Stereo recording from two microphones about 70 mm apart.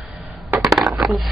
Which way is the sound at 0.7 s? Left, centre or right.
Centre.